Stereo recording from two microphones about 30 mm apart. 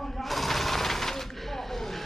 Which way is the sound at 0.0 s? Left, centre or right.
Centre.